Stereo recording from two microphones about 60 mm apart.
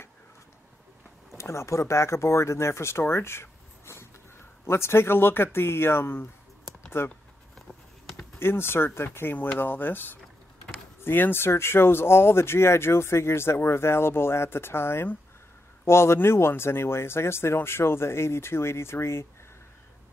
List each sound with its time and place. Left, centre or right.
1.4 s speech: left
8.4 s speech: left